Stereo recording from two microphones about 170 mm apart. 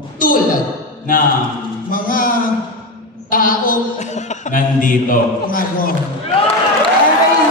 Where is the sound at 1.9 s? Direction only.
55° left (ahead or behind).